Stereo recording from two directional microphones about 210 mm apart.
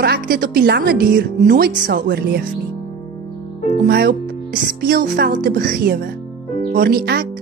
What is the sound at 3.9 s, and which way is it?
Speech, 45° right (ahead or behind).